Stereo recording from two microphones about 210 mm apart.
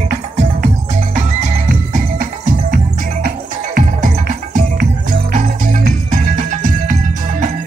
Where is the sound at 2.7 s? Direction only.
45° right (ahead or behind).